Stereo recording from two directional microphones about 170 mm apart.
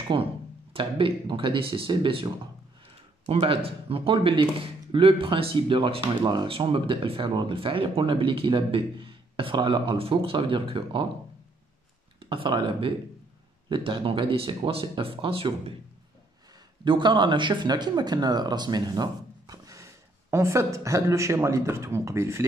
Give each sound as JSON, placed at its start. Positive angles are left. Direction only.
{"t": 0.1, "sound": "speech", "side_deg": -25}
{"t": 12.3, "sound": "speech", "side_deg": -30}
{"t": 16.8, "sound": "speech", "side_deg": -30}